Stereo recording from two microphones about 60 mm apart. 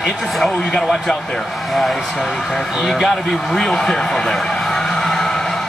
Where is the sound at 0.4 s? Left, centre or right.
Centre.